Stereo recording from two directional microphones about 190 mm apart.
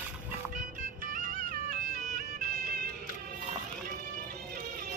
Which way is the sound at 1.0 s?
45° right (ahead or behind).